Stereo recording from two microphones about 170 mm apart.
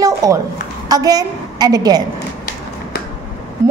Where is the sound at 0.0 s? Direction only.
20° right (ahead or behind).